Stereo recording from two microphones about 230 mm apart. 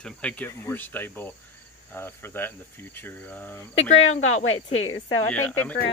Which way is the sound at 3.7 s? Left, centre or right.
Left.